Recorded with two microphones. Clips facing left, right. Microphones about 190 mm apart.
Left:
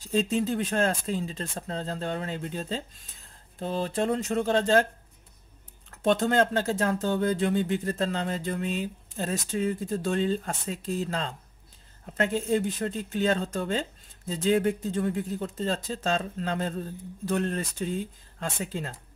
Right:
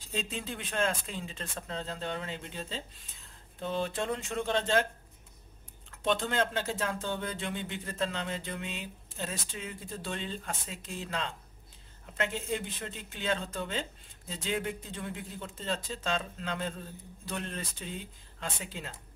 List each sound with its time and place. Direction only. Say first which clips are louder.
0.0 s speech: left 11 dB; 40° left (ahead or behind)
5.9 s speech: left 7 dB; 45° left (ahead or behind)